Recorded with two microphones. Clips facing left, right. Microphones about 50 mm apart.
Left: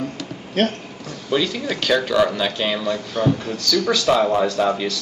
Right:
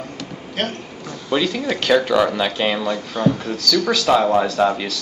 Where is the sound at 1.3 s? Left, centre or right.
Centre.